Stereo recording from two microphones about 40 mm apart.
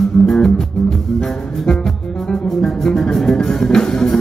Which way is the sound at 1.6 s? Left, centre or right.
Left.